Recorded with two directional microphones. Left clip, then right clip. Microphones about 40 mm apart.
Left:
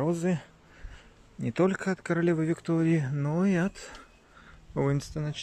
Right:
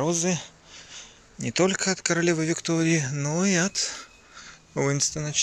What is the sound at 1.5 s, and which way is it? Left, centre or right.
Speech, left.